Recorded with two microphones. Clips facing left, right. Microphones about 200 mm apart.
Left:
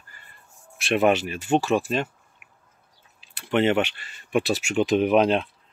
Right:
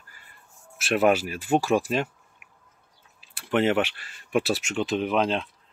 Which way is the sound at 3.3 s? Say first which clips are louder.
Left 1 dB; centre (ahead or behind).